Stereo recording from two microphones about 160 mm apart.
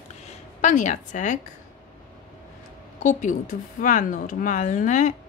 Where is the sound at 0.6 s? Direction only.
50° left (ahead or behind).